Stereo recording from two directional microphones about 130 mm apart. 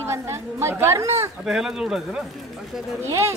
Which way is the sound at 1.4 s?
5° right (ahead or behind).